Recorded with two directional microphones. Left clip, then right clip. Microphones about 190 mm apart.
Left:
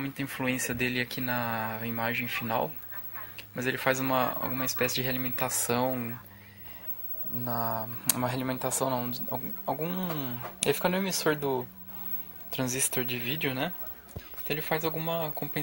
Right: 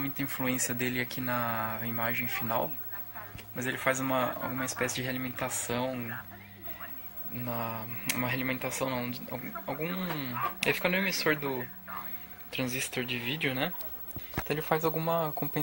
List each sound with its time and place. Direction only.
0.0 s speech: 10° left (ahead or behind); by 5.9 s 30° left (ahead or behind)
7.4 s speech: 20° left (ahead or behind)
14.5 s speech: 5° left (ahead or behind)